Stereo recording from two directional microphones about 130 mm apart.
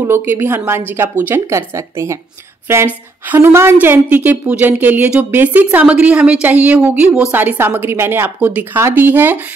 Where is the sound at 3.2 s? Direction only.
15° right (ahead or behind).